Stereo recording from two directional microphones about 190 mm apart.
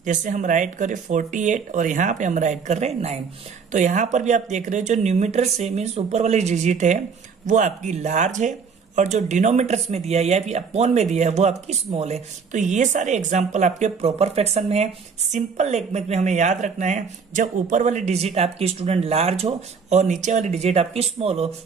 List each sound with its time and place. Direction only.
0.0 s speech: 40° right (ahead or behind)